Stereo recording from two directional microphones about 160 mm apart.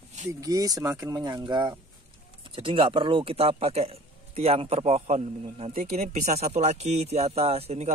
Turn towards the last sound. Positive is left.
turn(degrees=-40)  # may be behind; listen again after turning